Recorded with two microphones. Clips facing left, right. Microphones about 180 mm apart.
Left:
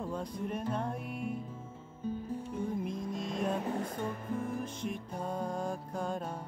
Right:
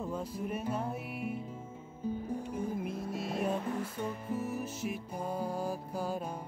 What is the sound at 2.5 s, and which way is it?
Music, 5° right (ahead or behind).